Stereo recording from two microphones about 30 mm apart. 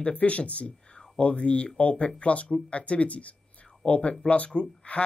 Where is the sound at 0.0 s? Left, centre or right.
Left.